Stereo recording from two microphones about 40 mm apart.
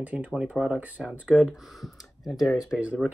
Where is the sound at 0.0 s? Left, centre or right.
Right.